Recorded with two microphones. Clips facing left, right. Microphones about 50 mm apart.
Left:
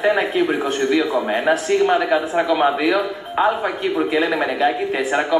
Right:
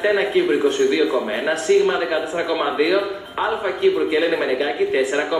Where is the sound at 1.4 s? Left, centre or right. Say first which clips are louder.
Right 1 dB; centre.